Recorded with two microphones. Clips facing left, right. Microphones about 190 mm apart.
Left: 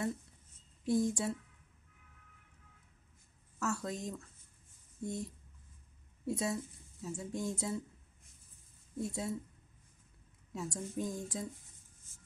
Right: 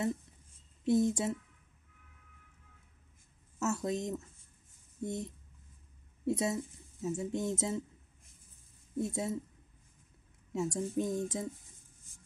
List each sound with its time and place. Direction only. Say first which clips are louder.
0.8 s speech: right 3 dB; 20° right (ahead or behind)
3.5 s speech: right 4 dB; 20° right (ahead or behind)
8.9 s speech: right 3 dB; 20° right (ahead or behind)
10.5 s speech: right 7 dB; 25° right (ahead or behind)